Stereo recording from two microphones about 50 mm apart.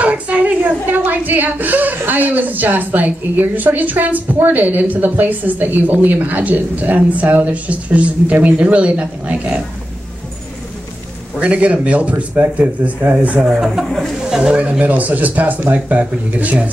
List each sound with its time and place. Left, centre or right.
0.0 s a woman's voice: right
11.3 s speech: right
13.5 s speech: centre
14.3 s speech: centre
14.6 s a woman's voice: right